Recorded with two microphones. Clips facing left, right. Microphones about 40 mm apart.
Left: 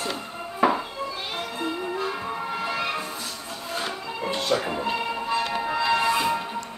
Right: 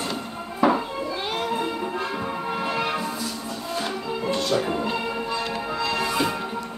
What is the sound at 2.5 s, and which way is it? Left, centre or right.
Music, centre.